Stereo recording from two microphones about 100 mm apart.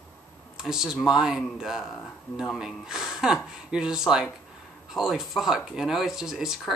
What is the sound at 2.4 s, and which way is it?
Speech, 5° left (ahead or behind).